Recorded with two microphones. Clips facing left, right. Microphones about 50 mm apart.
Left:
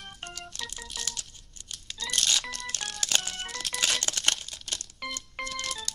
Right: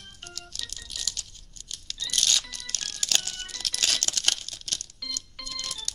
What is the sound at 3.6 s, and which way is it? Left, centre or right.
Crumpling, centre.